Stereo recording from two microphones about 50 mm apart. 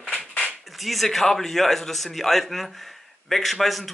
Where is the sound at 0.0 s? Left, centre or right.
Left.